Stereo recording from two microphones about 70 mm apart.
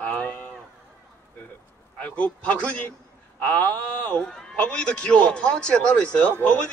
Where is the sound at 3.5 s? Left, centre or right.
Left.